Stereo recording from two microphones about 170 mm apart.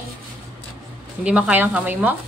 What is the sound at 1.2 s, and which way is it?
Speech, 10° right (ahead or behind).